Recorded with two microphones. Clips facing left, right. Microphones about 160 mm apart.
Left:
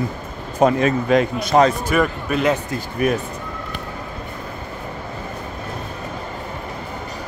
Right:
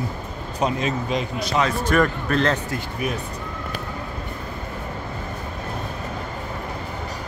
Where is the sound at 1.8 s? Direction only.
5° left (ahead or behind).